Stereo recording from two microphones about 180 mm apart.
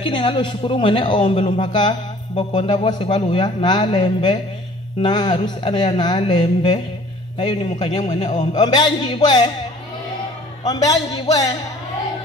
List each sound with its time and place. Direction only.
0.0 s a man's voice: 30° left (ahead or behind)
10.6 s a man's voice: 20° left (ahead or behind)